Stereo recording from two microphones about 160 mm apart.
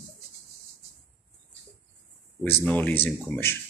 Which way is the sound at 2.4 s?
10° left (ahead or behind).